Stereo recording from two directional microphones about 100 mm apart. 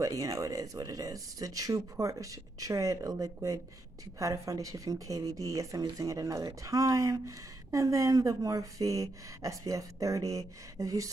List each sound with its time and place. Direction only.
0.0 s speech: 35° right (ahead or behind)